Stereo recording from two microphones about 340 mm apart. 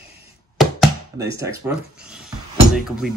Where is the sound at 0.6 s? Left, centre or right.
Centre.